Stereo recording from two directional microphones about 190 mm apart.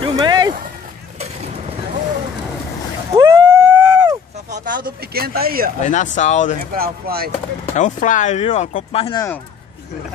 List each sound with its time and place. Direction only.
0.0 s a sound: 25° right (ahead or behind)
3.2 s vehicle: 20° right (ahead or behind)
4.5 s speech: 45° right (ahead or behind)
5.8 s speech: 40° left (ahead or behind)
6.7 s speech: 50° right (ahead or behind)
7.7 s speech: 40° left (ahead or behind)